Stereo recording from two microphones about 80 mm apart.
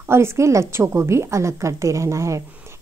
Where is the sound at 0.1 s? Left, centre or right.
Right.